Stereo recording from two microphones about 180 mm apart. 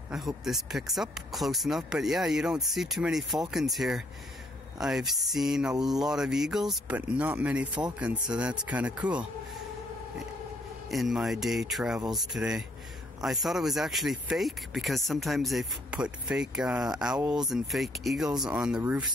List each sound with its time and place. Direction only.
0.1 s speech: centre (ahead or behind)
10.9 s speech: centre (ahead or behind)